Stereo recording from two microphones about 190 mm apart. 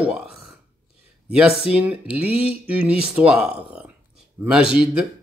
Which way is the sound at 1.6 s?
5° right (ahead or behind).